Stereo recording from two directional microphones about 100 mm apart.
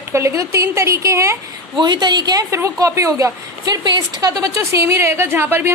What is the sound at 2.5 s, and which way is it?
A woman's voice, 30° right (ahead or behind).